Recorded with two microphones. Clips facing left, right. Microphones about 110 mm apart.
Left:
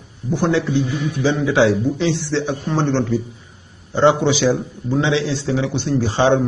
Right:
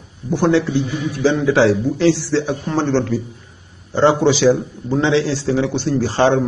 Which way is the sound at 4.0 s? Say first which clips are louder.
Right 1 dB; 5° right (ahead or behind).